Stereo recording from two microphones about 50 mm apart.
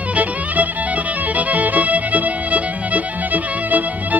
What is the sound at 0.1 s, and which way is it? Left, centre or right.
Music, right.